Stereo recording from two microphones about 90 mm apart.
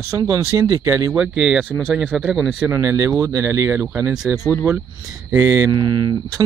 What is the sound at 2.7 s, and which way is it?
Speech, 35° right (ahead or behind).